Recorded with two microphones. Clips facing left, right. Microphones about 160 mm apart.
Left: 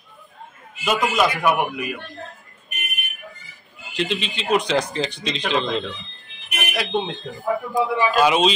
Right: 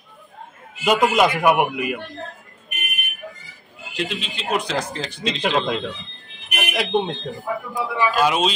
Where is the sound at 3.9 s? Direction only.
5° right (ahead or behind).